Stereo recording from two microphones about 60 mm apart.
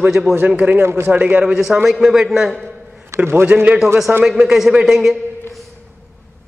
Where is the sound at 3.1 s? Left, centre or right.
Right.